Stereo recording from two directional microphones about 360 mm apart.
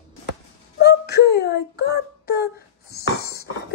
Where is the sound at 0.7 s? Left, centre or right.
Left.